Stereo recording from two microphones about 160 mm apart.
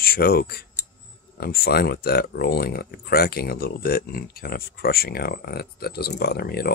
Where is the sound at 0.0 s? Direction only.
70° left (ahead or behind).